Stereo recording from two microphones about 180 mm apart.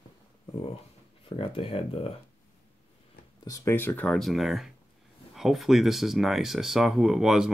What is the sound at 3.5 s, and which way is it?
Speech, 15° left (ahead or behind).